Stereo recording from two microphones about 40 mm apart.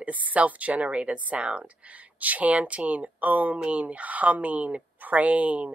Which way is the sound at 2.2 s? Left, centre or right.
Right.